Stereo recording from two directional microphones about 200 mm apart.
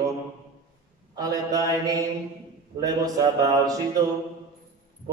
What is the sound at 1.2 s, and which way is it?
A man's voice, 20° right (ahead or behind).